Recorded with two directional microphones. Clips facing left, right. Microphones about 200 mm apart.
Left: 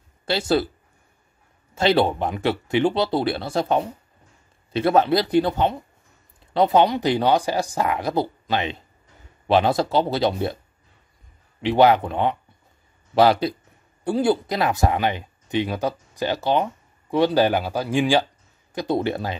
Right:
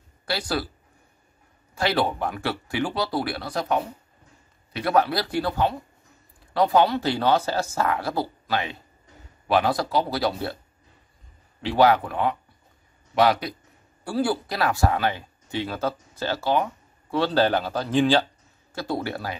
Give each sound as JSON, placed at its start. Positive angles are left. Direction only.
{"t": 0.2, "sound": "speech", "side_deg": 25}
{"t": 1.8, "sound": "speech", "side_deg": 25}
{"t": 11.6, "sound": "speech", "side_deg": 20}